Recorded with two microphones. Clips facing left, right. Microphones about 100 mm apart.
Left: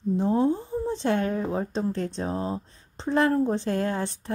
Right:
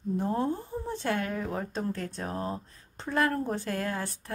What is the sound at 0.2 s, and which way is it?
Speech, 20° left (ahead or behind).